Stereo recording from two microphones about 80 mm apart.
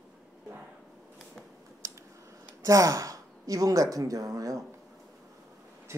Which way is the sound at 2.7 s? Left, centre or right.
Right.